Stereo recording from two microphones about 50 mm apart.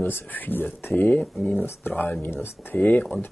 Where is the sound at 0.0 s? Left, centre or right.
Left.